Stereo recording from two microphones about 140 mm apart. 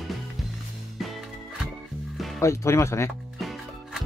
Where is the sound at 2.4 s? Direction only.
20° left (ahead or behind).